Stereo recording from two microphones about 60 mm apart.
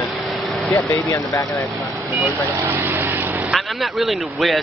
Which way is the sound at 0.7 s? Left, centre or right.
Left.